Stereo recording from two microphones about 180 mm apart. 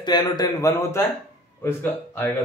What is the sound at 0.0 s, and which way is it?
A man's voice, 25° left (ahead or behind).